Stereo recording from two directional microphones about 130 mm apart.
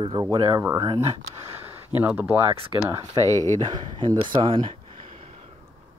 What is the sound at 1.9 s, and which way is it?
Speech, 15° right (ahead or behind).